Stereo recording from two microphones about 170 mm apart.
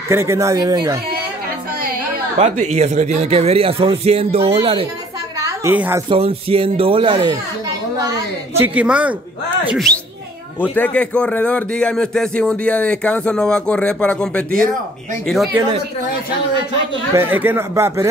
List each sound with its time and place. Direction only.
0.1 s speech: 15° right (ahead or behind)
2.4 s speech: 40° right (ahead or behind)
5.4 s a woman's voice: 15° right (ahead or behind)
6.0 s speech: 35° right (ahead or behind)
8.0 s a woman's voice: 20° right (ahead or behind)
10.7 s a man's voice: 10° left (ahead or behind)
17.1 s speech: 10° right (ahead or behind)